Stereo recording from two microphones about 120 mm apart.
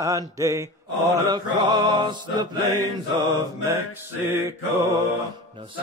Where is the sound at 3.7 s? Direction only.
20° right (ahead or behind).